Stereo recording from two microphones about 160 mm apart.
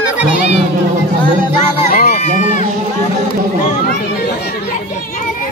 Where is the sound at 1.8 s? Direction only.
70° left (ahead or behind).